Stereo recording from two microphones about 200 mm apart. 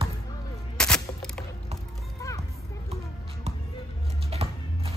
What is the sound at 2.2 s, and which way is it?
Children playing, 15° left (ahead or behind).